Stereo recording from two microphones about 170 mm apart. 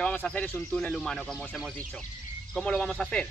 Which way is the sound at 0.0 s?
5° left (ahead or behind).